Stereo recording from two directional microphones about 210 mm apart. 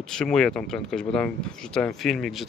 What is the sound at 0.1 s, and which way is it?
Speech, 5° left (ahead or behind).